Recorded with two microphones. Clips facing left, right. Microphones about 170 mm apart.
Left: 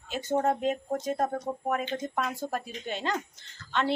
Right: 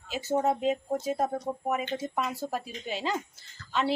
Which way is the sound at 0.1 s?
5° right (ahead or behind).